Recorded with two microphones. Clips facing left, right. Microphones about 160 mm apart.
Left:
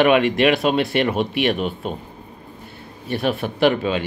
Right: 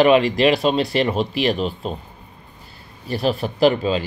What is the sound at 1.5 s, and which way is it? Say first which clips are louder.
Speech: even; 5° left (ahead or behind).